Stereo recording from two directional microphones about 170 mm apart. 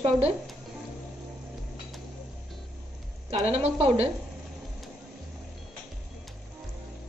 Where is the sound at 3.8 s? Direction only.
35° right (ahead or behind).